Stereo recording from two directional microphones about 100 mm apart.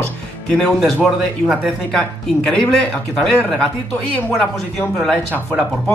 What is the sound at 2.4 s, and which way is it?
A man's voice, 5° left (ahead or behind).